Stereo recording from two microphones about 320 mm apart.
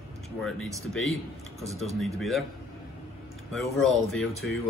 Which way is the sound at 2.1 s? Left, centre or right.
Centre.